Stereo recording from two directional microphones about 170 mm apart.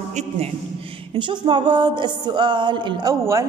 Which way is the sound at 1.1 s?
25° right (ahead or behind).